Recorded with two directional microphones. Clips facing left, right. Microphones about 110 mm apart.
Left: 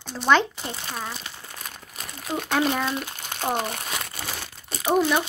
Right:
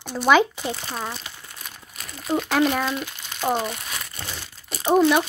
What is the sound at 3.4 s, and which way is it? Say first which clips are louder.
Speech: right 3 dB; 15° left (ahead or behind).